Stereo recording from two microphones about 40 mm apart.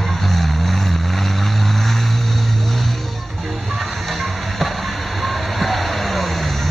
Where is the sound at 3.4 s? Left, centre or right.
Centre.